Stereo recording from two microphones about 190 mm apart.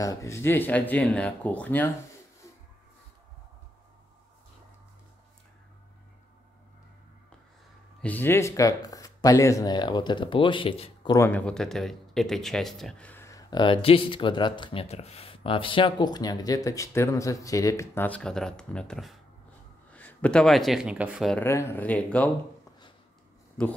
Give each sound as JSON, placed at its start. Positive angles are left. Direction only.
{"t": 0.0, "sound": "speech", "side_deg": 15}
{"t": 8.0, "sound": "speech", "side_deg": 10}
{"t": 11.1, "sound": "speech", "side_deg": 10}
{"t": 21.4, "sound": "speech", "side_deg": 15}